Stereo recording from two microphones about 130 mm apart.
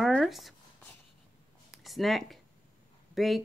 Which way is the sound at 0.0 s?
Centre (ahead or behind).